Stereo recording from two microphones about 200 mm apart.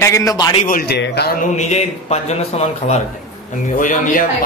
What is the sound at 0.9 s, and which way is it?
Speech, 55° left (ahead or behind).